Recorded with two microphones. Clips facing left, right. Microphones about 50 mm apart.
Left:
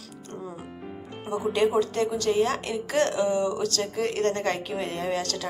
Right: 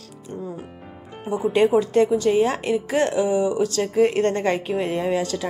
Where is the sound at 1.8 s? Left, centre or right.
Right.